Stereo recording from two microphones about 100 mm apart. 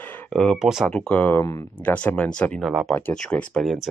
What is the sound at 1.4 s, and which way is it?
Speech, 30° left (ahead or behind).